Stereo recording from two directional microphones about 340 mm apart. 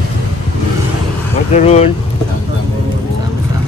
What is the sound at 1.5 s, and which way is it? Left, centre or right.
Speech, centre.